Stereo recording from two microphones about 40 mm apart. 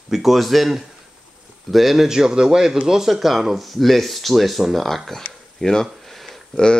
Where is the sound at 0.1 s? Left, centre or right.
Centre.